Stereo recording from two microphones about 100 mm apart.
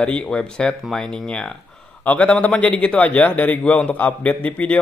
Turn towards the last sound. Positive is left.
turn(degrees=15)  # may be behind; listen again after turning